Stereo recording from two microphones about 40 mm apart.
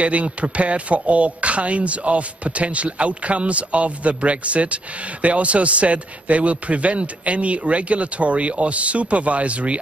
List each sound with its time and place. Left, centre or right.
0.0 s speech: right